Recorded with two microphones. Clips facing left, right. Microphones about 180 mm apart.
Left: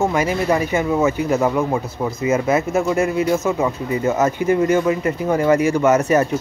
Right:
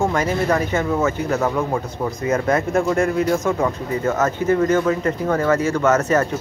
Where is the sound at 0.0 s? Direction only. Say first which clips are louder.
Left 1 dB; 10° left (ahead or behind).